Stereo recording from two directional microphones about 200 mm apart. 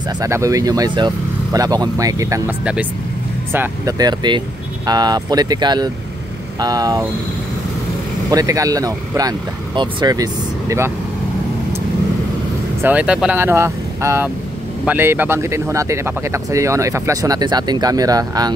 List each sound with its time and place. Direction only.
0.2 s speech: 15° right (ahead or behind)
3.5 s speech: 20° right (ahead or behind)
8.3 s speech: 15° right (ahead or behind)
12.8 s speech: 5° right (ahead or behind)